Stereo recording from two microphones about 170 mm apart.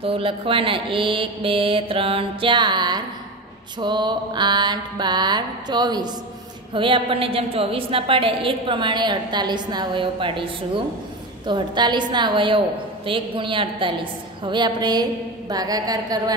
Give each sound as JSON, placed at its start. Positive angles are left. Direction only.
{"t": 0.0, "sound": "a woman's voice", "side_deg": -30}